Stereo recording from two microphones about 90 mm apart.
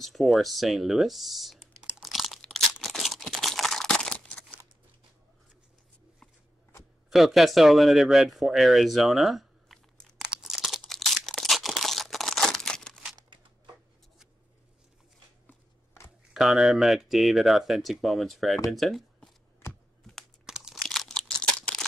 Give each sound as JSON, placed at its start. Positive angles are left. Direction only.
{"t": 0.0, "sound": "speech", "side_deg": 0}
{"t": 2.0, "sound": "crunch", "side_deg": 0}
{"t": 7.1, "sound": "speech", "side_deg": 0}
{"t": 10.2, "sound": "crunch", "side_deg": -10}
{"t": 10.5, "sound": "crunch", "side_deg": 0}
{"t": 15.4, "sound": "a sound", "side_deg": 25}
{"t": 16.3, "sound": "speech", "side_deg": -5}
{"t": 20.4, "sound": "a sound", "side_deg": -5}